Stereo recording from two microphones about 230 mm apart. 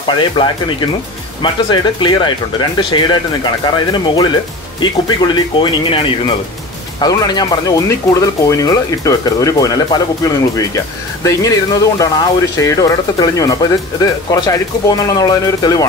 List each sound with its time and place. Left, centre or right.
0.0 s speech: left